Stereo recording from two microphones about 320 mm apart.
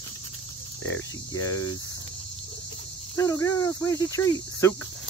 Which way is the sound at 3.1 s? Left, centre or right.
Centre.